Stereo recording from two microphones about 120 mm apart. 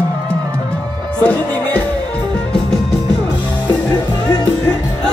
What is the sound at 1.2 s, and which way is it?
Music, 10° left (ahead or behind).